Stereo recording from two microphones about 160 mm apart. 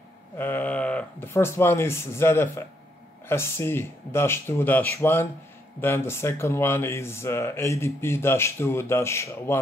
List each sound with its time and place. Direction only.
0.4 s speech: 10° left (ahead or behind)